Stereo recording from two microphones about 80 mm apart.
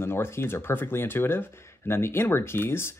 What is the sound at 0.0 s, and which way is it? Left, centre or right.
Speech, left.